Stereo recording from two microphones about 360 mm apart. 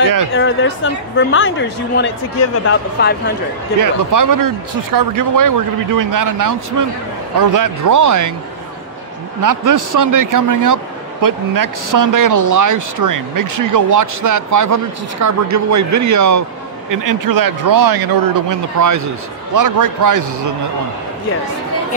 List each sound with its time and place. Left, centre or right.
0.3 s speech: left
3.8 s a man's voice: right
9.4 s a man's voice: right